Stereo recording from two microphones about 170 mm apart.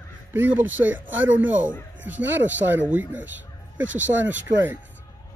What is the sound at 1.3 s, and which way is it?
Speech, 90° right.